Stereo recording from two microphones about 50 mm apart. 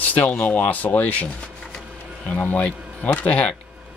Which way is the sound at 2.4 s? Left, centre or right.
Left.